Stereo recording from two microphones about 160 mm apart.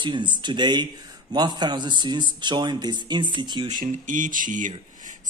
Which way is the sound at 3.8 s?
55° right (ahead or behind).